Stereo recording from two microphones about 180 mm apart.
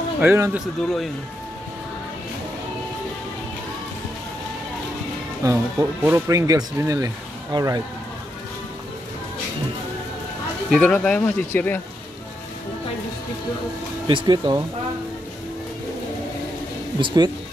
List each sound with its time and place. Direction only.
0.2 s speech: 15° right (ahead or behind)
0.7 s speech: centre (ahead or behind)
5.4 s speech: 15° right (ahead or behind)
10.7 s speech: 5° left (ahead or behind)
14.0 s speech: 25° right (ahead or behind)
17.0 s speech: 25° right (ahead or behind)